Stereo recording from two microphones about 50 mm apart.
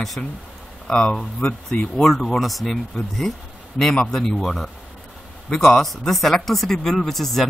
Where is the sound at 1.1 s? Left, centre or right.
Centre.